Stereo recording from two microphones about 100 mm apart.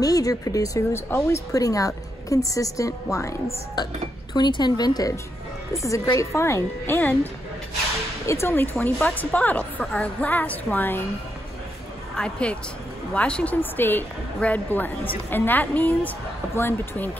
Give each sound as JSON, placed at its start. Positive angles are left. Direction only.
{"t": 0.0, "sound": "a woman's voice", "side_deg": 40}
{"t": 3.7, "sound": "a woman's voice", "side_deg": 45}
{"t": 8.3, "sound": "a woman's voice", "side_deg": 25}
{"t": 12.2, "sound": "a woman's voice", "side_deg": 10}